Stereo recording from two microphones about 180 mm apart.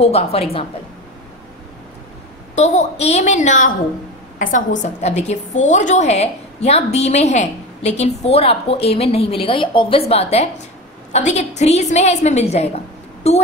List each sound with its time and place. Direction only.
0.0 s a woman's voice: 35° left (ahead or behind)
2.5 s a woman's voice: 40° left (ahead or behind)